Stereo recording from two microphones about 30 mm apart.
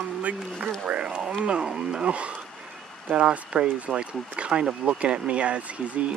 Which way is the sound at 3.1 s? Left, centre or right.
Right.